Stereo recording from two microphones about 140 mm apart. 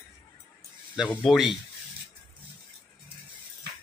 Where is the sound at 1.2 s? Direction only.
Centre (ahead or behind).